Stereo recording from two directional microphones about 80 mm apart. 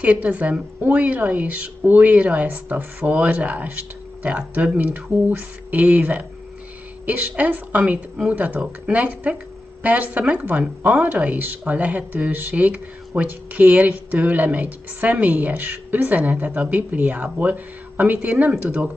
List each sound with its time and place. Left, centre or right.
0.0 s speech: centre